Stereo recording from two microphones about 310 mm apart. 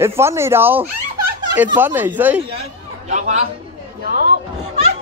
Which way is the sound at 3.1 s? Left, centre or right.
Right.